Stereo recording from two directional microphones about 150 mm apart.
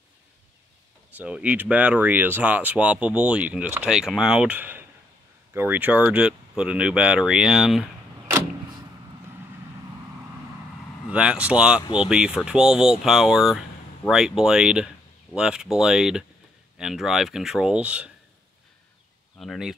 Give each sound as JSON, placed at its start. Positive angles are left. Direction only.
{"t": 1.1, "sound": "speech", "side_deg": -10}
{"t": 11.1, "sound": "speech", "side_deg": -5}
{"t": 11.8, "sound": "speech", "side_deg": 35}
{"t": 12.1, "sound": "speech", "side_deg": -5}
{"t": 19.3, "sound": "speech", "side_deg": 0}